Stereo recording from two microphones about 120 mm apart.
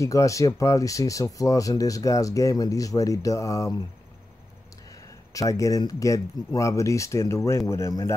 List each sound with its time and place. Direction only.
0.0 s speech: 25° left (ahead or behind)
5.3 s speech: 30° left (ahead or behind)